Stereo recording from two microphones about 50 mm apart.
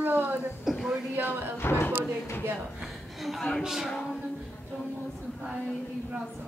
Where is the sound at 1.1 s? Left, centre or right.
Right.